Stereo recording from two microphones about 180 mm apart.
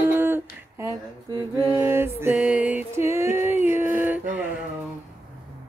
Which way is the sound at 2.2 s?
5° right (ahead or behind).